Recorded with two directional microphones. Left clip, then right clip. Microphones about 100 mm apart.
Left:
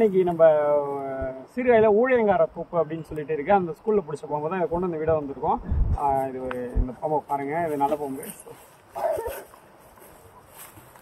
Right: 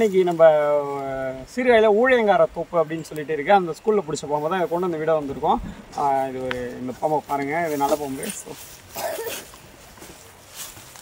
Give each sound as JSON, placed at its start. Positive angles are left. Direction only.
{"t": 0.0, "sound": "speech", "side_deg": -20}